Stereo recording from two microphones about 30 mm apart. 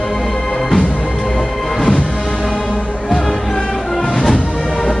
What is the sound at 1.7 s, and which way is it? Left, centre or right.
Music, centre.